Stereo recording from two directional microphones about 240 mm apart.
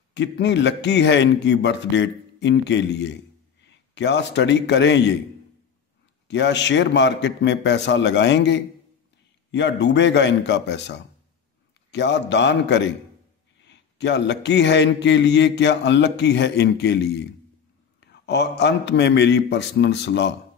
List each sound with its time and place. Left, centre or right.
0.1 s a man's voice: left
6.2 s a man's voice: left
18.0 s a man's voice: left